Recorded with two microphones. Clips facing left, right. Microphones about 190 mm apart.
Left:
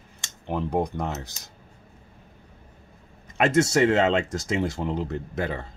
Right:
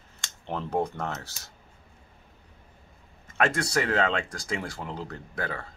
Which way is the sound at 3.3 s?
20° left (ahead or behind).